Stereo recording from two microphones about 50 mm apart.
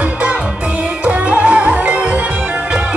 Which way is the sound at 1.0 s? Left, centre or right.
Right.